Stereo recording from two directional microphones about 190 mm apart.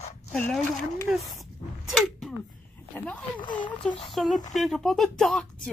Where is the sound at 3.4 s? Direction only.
25° left (ahead or behind).